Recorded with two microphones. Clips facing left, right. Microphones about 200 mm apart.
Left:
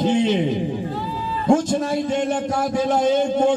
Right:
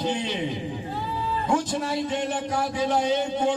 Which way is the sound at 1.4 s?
45° left (ahead or behind).